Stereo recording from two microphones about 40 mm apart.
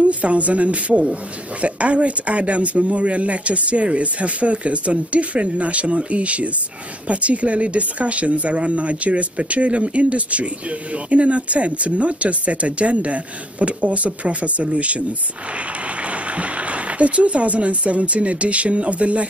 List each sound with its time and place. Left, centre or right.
0.0 s speech: right